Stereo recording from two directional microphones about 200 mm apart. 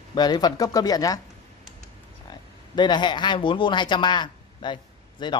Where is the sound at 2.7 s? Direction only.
20° left (ahead or behind).